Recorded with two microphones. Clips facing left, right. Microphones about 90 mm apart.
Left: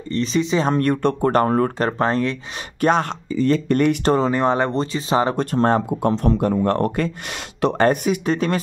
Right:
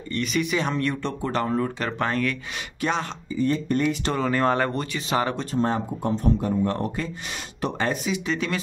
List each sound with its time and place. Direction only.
0.1 s speech: 30° left (ahead or behind)
0.7 s speech: 50° left (ahead or behind)
1.9 s speech: 30° left (ahead or behind)
2.8 s speech: 50° left (ahead or behind)
3.3 s speech: 90° left; by 4.0 s 60° left (ahead or behind)
4.0 s speech: 35° left (ahead or behind)
4.3 s speech: 20° left (ahead or behind)
5.3 s speech: 60° left (ahead or behind)